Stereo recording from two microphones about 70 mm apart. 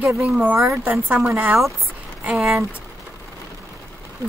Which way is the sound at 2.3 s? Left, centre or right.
Centre.